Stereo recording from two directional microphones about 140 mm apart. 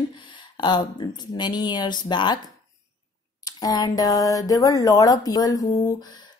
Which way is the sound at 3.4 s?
25° left (ahead or behind).